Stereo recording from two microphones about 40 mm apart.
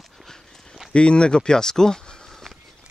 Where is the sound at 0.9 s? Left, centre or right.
Left.